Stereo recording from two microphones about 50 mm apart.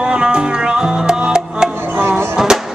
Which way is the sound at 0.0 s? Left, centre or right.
Centre.